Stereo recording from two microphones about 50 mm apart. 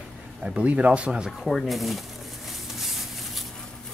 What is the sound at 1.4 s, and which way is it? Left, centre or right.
Speech, centre.